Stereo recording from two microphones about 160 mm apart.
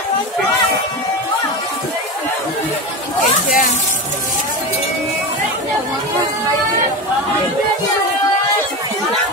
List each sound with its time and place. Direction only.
3.2 s speech: 50° left (ahead or behind)